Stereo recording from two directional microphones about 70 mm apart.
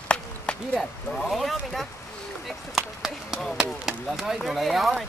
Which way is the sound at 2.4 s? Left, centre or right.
Centre.